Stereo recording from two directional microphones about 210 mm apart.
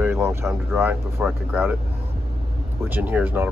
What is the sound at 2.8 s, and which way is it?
Speech, 10° right (ahead or behind).